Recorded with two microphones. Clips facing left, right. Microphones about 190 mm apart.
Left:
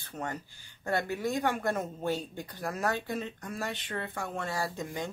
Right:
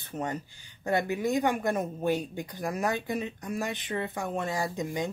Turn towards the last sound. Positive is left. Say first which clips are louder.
# right 4 dB
turn(degrees=-15)  # may be behind; listen again after turning